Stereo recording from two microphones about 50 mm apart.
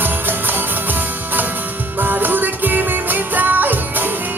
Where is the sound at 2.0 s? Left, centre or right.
Right.